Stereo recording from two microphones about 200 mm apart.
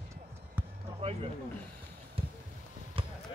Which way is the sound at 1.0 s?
30° right (ahead or behind).